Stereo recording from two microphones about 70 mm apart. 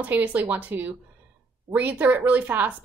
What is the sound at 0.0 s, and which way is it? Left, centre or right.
A woman's voice, right.